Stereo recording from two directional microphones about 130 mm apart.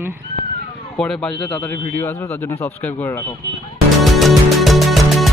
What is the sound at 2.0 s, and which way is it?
A man's voice, 20° left (ahead or behind).